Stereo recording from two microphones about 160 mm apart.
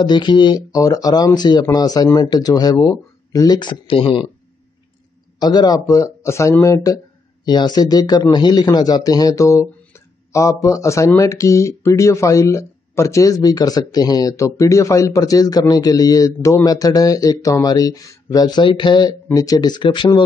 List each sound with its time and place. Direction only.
0.0 s speech: 30° left (ahead or behind)
5.4 s speech: 25° left (ahead or behind)